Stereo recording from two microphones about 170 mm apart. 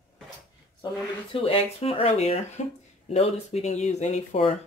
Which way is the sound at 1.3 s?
30° left (ahead or behind).